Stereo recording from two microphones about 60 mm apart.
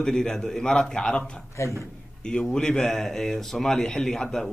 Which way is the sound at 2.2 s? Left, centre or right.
Centre.